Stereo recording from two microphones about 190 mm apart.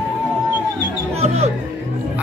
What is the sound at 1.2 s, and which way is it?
Music, 35° right (ahead or behind).